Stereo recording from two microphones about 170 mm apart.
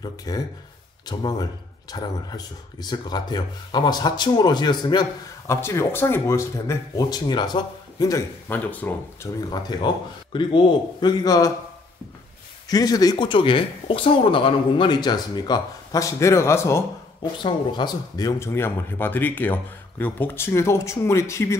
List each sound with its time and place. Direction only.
0.0 s speech: 20° left (ahead or behind)
9.5 s speech: 25° left (ahead or behind)
12.6 s speech: 20° left (ahead or behind)
17.2 s speech: 25° left (ahead or behind)